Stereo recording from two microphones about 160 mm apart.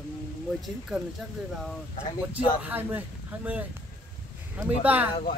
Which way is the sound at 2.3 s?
10° right (ahead or behind).